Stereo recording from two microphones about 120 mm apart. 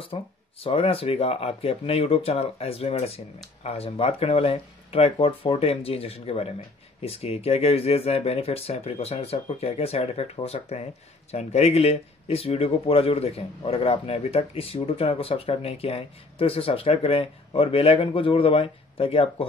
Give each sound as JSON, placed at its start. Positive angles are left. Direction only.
{"t": 0.0, "sound": "speech", "side_deg": 50}